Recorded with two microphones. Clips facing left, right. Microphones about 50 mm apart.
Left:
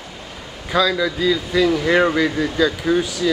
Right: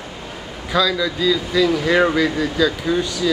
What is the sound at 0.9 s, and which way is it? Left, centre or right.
Speech, centre.